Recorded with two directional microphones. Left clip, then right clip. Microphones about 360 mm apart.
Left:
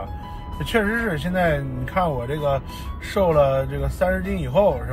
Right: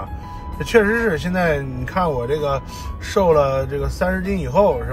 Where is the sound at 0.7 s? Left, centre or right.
Centre.